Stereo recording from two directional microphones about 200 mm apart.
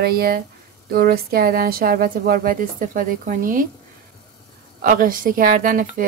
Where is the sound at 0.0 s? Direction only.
50° right (ahead or behind).